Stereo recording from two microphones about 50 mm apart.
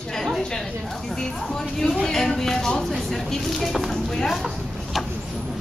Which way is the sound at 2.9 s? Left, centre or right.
Centre.